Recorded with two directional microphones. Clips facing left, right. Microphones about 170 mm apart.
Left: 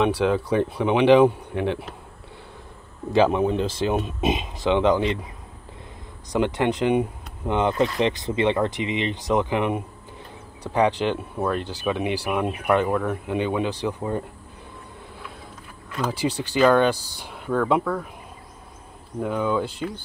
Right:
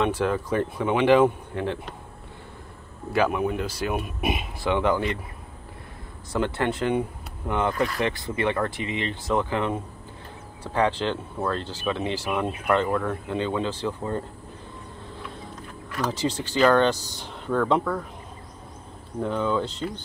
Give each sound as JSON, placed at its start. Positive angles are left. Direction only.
{"t": 0.0, "sound": "speech", "side_deg": 10}
{"t": 3.1, "sound": "speech", "side_deg": 25}
{"t": 6.3, "sound": "speech", "side_deg": 15}
{"t": 16.1, "sound": "speech", "side_deg": 15}
{"t": 19.1, "sound": "speech", "side_deg": 10}